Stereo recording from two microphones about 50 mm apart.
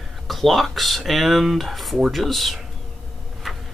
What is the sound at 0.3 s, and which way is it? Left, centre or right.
Speech, centre.